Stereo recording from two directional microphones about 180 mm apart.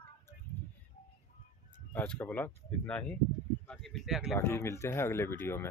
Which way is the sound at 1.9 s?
10° left (ahead or behind).